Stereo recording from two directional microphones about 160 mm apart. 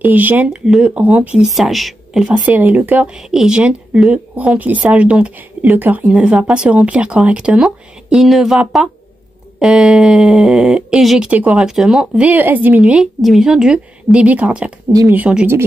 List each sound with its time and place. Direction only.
0.0 s speech: 10° right (ahead or behind)
14.9 s speech: 20° right (ahead or behind)
15.1 s speech: 10° right (ahead or behind)